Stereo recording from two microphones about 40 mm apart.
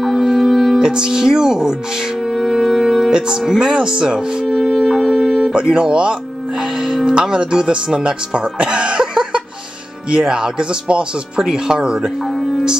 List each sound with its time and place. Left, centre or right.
0.0 s music: centre
0.7 s speech: centre
2.3 s music: centre
3.1 s speech: centre
4.5 s music: centre
5.5 s speech: right
6.8 s music: centre
7.2 s speech: centre
12.0 s music: centre